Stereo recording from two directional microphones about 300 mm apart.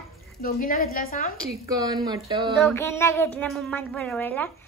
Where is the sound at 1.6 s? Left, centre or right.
Centre.